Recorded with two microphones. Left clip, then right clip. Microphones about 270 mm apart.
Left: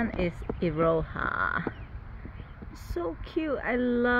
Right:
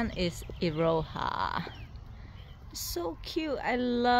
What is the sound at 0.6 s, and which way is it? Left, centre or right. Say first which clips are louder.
Speech: left 2 dB; centre.